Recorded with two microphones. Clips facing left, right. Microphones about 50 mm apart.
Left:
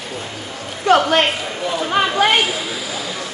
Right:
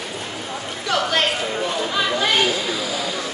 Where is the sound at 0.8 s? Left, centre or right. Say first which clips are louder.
Left 7 dB; left.